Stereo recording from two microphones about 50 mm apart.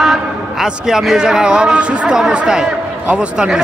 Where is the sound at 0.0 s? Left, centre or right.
Centre.